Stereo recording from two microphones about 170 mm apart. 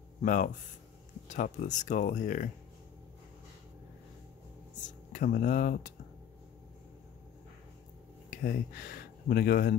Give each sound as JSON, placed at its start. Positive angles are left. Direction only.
{"t": 0.2, "sound": "speech", "side_deg": 50}
{"t": 4.8, "sound": "speech", "side_deg": 50}
{"t": 8.3, "sound": "speech", "side_deg": 55}